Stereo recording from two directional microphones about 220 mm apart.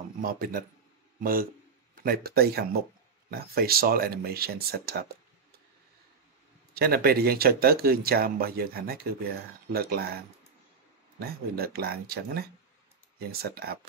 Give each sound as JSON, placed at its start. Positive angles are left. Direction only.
{"t": 0.2, "sound": "speech", "side_deg": -40}
{"t": 6.7, "sound": "speech", "side_deg": -45}
{"t": 11.1, "sound": "speech", "side_deg": -45}